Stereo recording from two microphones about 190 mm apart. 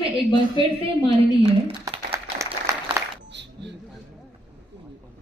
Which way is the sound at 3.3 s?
65° right (ahead or behind).